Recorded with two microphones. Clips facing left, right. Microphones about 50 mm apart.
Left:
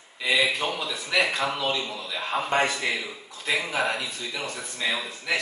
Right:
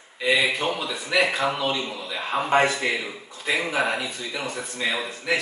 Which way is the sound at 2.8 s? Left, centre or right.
Centre.